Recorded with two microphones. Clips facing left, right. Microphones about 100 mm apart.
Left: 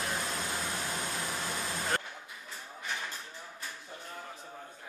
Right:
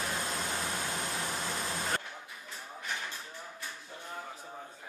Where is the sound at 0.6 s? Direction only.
15° right (ahead or behind).